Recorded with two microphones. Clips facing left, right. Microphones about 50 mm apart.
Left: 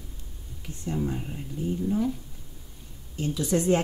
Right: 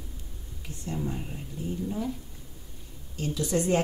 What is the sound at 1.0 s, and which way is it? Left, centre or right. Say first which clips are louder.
Speech: left 3 dB; centre.